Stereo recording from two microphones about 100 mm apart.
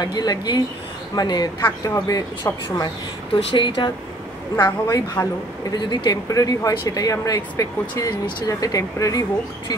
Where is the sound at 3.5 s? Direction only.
50° left (ahead or behind).